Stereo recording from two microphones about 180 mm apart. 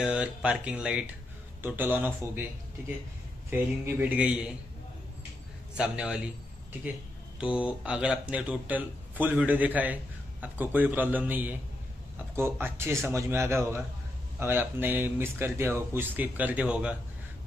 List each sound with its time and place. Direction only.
0.0 s speech: 5° right (ahead or behind)
3.4 s speech: 10° right (ahead or behind)
5.8 s a man's voice: 5° right (ahead or behind)
7.3 s speech: 5° right (ahead or behind)